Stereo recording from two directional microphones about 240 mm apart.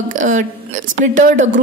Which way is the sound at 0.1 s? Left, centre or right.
Right.